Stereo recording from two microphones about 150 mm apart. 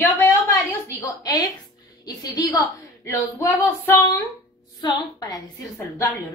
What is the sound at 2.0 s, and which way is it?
A woman's voice, 25° left (ahead or behind).